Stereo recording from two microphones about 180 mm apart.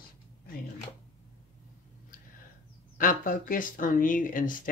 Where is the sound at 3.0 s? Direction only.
50° left (ahead or behind).